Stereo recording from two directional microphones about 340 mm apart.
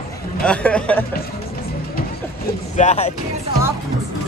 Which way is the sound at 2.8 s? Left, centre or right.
Centre.